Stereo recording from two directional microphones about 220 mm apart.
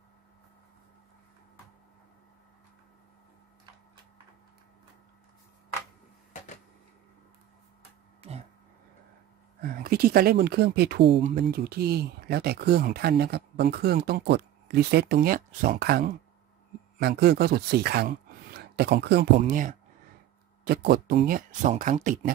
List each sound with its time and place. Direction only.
9.6 s speech: 40° right (ahead or behind)
11.1 s speech: 25° right (ahead or behind)
11.3 s speech: 45° right (ahead or behind)
19.3 s speech: 35° right (ahead or behind)